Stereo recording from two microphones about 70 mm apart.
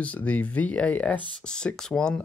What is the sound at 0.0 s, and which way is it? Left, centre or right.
Speech, left.